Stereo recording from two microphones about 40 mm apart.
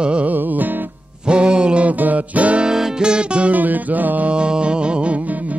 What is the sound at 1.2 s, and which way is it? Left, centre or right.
Music, right.